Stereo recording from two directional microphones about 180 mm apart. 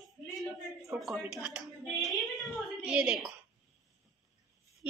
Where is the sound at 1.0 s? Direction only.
Centre (ahead or behind).